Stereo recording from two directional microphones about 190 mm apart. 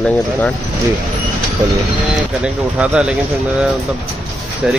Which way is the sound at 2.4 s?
5° right (ahead or behind).